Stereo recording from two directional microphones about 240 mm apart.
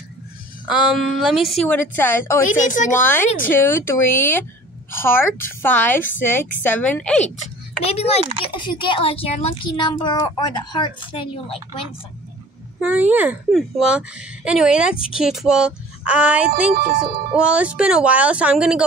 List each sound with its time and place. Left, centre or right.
0.7 s a woman's voice: centre
2.4 s speech: left
3.0 s speech: centre
5.6 s speech: centre
7.8 s speech: left
12.8 s a woman's voice: centre